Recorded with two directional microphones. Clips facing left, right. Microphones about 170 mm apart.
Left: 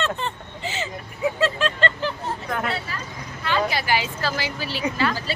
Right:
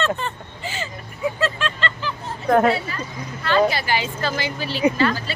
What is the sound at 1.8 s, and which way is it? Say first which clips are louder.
Vehicle: left 3 dB; 55° left (ahead or behind).